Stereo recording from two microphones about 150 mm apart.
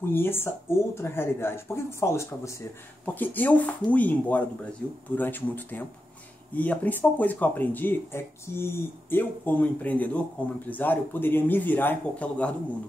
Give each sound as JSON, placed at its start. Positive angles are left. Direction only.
{"t": 0.1, "sound": "speech", "side_deg": 15}